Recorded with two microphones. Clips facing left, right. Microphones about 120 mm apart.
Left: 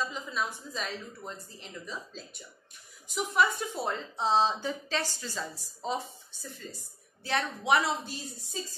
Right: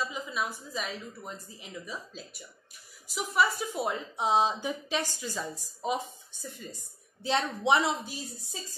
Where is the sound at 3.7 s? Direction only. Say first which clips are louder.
Right 2 dB; 15° right (ahead or behind).